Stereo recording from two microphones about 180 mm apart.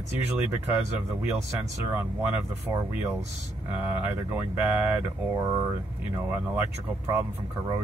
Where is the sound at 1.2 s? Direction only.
10° right (ahead or behind).